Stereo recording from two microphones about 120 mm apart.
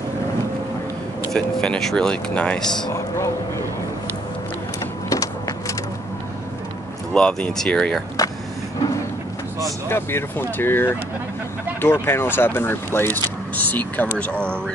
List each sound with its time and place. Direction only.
1.3 s speech: 5° left (ahead or behind)
2.9 s a sound: 25° left (ahead or behind)
7.2 s speech: 10° left (ahead or behind)
9.8 s speech: 20° left (ahead or behind)